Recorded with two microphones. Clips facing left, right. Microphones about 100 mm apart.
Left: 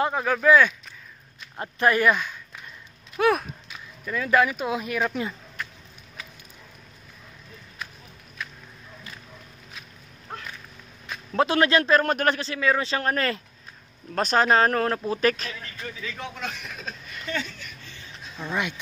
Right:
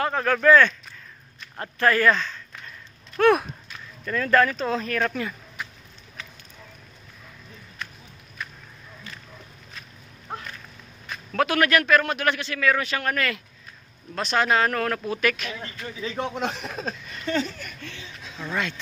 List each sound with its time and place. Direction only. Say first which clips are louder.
0.0 s speech: right 1 dB; 10° left (ahead or behind)
5.6 s a sound: even; 10° right (ahead or behind)
11.3 s speech: left 1 dB; 25° left (ahead or behind)
15.6 s speech: right 3 dB; 30° right (ahead or behind)
17.6 s speech: right 5 dB; 55° right (ahead or behind)
18.4 s speech: even; 15° left (ahead or behind)